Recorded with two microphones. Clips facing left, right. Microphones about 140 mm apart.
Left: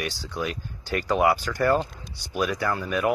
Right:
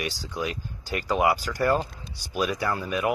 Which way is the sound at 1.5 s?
35° right (ahead or behind).